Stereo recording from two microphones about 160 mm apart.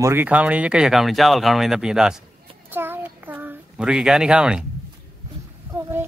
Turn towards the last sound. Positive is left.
turn(degrees=-15)  # may be behind; listen again after turning